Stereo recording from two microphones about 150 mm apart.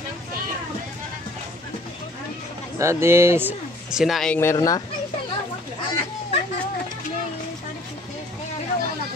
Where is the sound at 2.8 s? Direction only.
20° right (ahead or behind).